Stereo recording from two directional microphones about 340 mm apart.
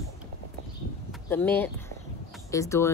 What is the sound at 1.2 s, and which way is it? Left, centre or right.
Speech, centre.